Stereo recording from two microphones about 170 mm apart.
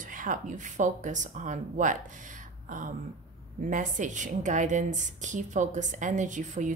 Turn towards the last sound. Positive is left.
turn(degrees=-45)  # may be behind; listen again after turning